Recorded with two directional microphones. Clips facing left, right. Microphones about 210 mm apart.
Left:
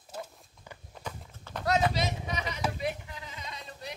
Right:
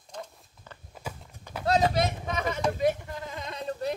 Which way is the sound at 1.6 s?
30° right (ahead or behind).